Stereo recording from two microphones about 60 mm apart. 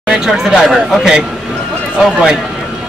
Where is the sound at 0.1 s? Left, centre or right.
Centre.